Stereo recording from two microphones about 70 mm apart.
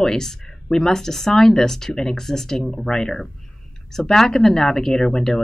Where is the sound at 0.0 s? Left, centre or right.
Centre.